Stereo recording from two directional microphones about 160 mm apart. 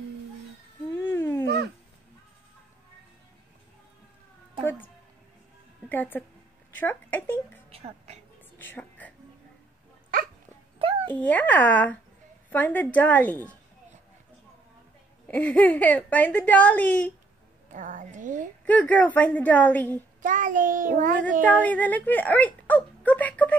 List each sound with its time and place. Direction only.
0.9 s a sound: 15° left (ahead or behind)
4.6 s music: 10° left (ahead or behind)
5.9 s speech: 10° left (ahead or behind)
7.7 s a woman's voice: 40° right (ahead or behind)
8.5 s music: 10° left (ahead or behind)
11.1 s speech: 10° left (ahead or behind)
15.2 s speech: 10° left (ahead or behind)
17.7 s a woman's voice: 55° right (ahead or behind)
18.7 s speech: 10° left (ahead or behind)
20.2 s child singing: 55° right (ahead or behind)
21.4 s speech: 10° left (ahead or behind)